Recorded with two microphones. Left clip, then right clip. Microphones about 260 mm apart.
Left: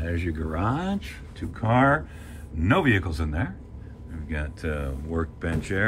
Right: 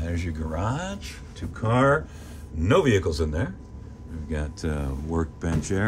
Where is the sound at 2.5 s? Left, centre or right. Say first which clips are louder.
Right 2 dB; centre.